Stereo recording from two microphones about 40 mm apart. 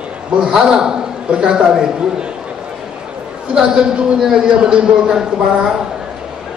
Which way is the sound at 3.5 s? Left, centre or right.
Centre.